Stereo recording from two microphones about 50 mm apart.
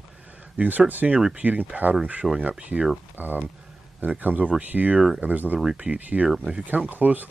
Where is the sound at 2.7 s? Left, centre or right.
Right.